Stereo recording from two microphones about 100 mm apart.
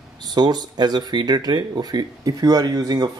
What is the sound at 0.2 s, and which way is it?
Speech, 45° right (ahead or behind).